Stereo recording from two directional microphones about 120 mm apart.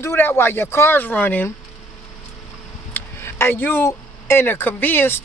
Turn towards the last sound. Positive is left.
turn(degrees=15)  # may be behind; listen again after turning